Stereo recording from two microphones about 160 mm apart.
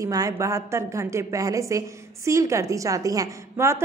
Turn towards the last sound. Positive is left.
turn(degrees=-15)  # may be behind; listen again after turning